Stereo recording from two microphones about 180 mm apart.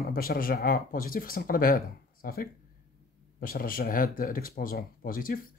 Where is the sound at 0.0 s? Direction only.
55° left (ahead or behind).